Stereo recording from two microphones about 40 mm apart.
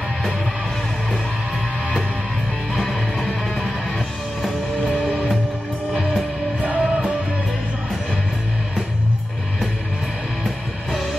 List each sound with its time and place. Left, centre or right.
2.7 s music: centre
6.6 s music: right
10.4 s music: centre